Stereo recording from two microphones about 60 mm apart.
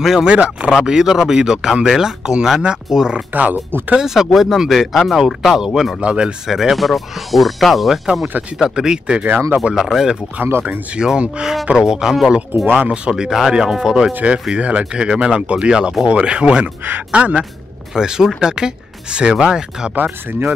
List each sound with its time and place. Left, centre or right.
0.2 s speech: centre
5.9 s speech: centre
6.5 s speech: centre
10.4 s speech: right
11.0 s speech: centre
13.2 s speech: centre